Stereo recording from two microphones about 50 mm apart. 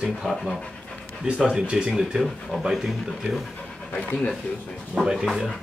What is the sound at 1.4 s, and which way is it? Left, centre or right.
Speech, centre.